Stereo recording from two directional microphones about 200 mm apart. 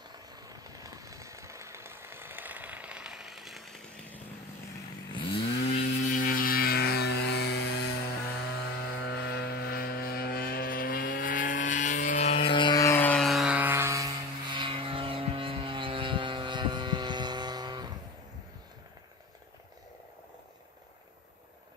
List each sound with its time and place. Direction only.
0.1 s a sound: 20° right (ahead or behind); by 4.2 s 5° left (ahead or behind)
5.7 s vehicle: 45° left (ahead or behind)
7.7 s chainsaw: 55° left (ahead or behind)
9.1 s vehicle: 55° left (ahead or behind); by 17.9 s 20° right (ahead or behind)